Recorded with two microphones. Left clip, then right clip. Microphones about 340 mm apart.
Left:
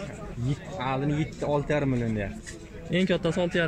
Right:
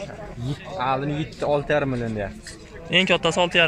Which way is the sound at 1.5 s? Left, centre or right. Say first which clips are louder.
Right 5 dB; right.